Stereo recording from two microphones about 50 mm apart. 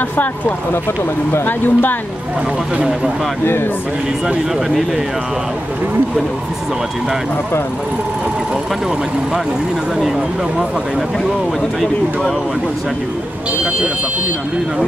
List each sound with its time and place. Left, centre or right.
1.4 s speech: left